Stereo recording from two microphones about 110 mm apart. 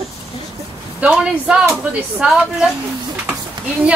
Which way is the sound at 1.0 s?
10° right (ahead or behind).